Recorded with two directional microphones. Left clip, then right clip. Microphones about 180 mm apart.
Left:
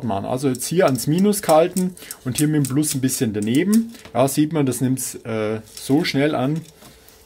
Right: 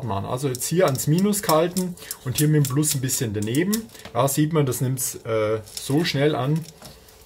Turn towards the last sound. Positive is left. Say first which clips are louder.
# left 2 dB
turn(degrees=40)  # may be behind; listen again after turning